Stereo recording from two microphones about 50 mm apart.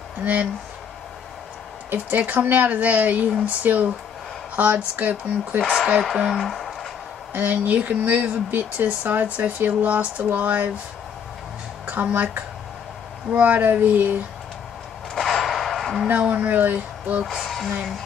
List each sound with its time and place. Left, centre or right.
0.2 s speech: right
1.9 s speech: right
5.6 s speech: centre
6.3 s a sound: centre
7.3 s speech: right
11.8 s speech: right
15.1 s a sound: centre
16.1 s speech: right
17.2 s speech: centre